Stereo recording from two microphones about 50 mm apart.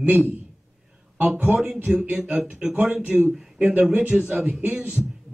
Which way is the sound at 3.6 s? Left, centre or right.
Right.